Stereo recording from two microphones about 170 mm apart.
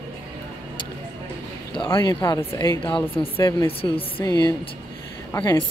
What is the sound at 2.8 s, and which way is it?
Speech, 30° left (ahead or behind).